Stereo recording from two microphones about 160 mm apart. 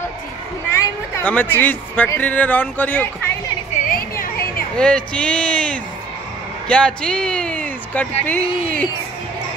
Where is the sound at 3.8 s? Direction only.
65° left (ahead or behind).